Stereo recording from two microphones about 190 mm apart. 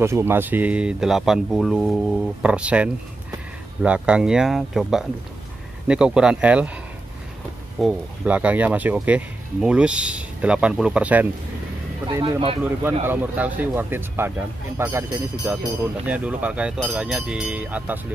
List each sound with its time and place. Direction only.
0.0 s speech: 15° right (ahead or behind)
7.8 s speech: 5° right (ahead or behind)
12.1 s speech: 20° right (ahead or behind)
13.0 s speech: 10° right (ahead or behind)